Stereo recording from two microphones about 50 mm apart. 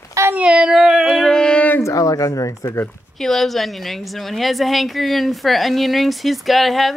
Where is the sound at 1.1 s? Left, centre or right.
Centre.